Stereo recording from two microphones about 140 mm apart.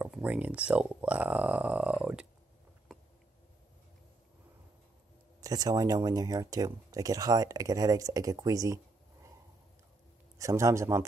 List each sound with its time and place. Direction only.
0.0 s speech: 10° right (ahead or behind)
2.9 s a sound: 5° left (ahead or behind)
5.4 s speech: 25° right (ahead or behind)
10.4 s speech: 20° right (ahead or behind)